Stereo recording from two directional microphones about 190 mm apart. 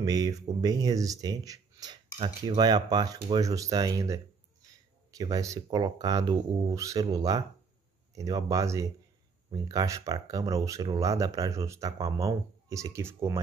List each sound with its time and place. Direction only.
0.0 s speech: 20° right (ahead or behind)